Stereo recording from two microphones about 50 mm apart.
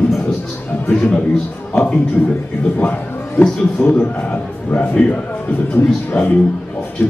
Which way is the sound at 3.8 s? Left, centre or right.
Left.